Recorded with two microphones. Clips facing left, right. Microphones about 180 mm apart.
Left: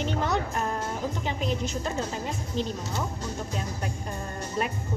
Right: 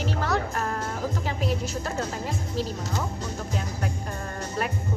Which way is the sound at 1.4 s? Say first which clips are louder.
Right 1 dB; 5° right (ahead or behind).